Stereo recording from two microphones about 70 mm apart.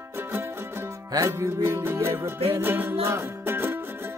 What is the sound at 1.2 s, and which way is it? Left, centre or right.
Music, right.